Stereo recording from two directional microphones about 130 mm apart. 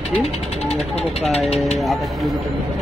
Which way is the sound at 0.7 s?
55° left (ahead or behind).